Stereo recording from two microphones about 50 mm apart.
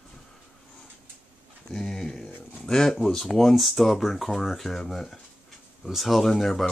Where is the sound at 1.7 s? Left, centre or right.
Centre.